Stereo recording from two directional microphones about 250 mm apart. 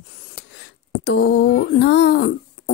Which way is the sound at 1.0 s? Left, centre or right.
Left.